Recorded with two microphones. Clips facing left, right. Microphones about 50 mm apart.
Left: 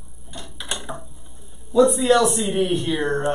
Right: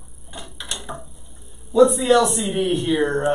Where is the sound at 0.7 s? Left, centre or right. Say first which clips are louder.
Left 3 dB; centre.